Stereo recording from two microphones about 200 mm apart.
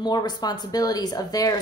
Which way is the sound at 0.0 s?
20° left (ahead or behind).